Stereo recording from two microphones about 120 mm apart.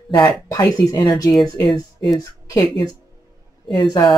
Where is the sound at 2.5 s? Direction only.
30° left (ahead or behind).